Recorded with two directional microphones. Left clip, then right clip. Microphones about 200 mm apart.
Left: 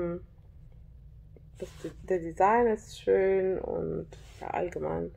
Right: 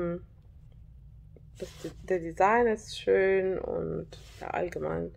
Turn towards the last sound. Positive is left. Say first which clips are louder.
# even
turn(degrees=-5)  # may be behind; listen again after turning